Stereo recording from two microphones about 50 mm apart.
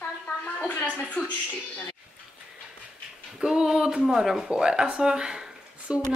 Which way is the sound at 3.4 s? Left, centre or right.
Centre.